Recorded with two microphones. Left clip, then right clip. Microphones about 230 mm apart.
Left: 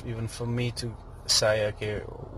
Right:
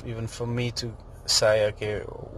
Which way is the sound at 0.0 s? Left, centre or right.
Centre.